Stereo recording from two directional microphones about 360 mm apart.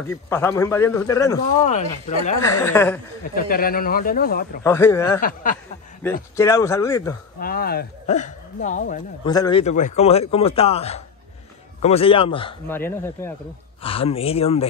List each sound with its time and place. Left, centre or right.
0.1 s speech: centre
2.6 s speech: centre
3.3 s speech: left
4.6 s speech: centre
5.2 s speech: left
6.3 s speech: centre
7.3 s speech: left